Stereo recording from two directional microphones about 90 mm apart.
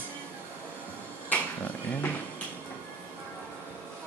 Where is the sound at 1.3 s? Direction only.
15° left (ahead or behind).